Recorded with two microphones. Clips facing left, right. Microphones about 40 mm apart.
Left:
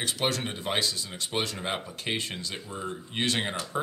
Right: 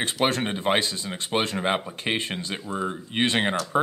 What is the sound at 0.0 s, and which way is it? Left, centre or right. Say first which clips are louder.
Speech: right 5 dB; right.